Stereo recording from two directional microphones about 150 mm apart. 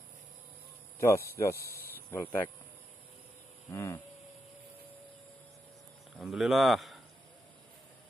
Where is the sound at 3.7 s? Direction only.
20° left (ahead or behind).